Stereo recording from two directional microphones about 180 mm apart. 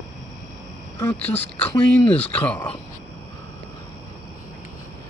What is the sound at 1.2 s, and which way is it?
Speech, 35° left (ahead or behind).